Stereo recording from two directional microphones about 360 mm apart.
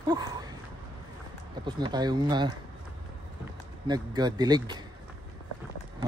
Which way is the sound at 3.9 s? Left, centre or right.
Centre.